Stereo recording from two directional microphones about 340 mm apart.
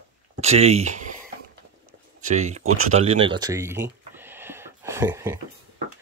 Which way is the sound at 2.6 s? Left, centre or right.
Right.